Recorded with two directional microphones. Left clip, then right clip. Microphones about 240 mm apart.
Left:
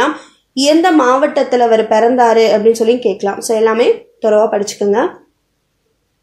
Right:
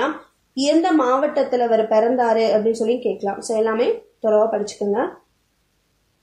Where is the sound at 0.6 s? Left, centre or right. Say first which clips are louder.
Left 7 dB; left.